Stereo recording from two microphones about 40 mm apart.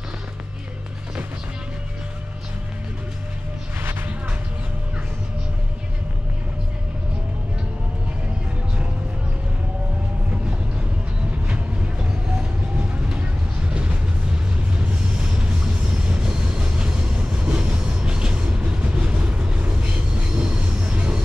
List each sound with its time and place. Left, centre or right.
11.4 s train: right
12.7 s vehicle: right
14.8 s music: right
17.5 s train: right